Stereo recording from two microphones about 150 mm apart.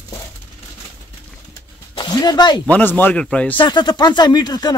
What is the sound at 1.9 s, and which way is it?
Speech, 25° left (ahead or behind).